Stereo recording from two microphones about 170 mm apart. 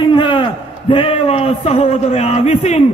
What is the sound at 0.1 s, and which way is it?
A man's voice, 30° left (ahead or behind).